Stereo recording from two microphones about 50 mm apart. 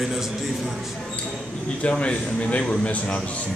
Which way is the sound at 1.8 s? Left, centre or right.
Left.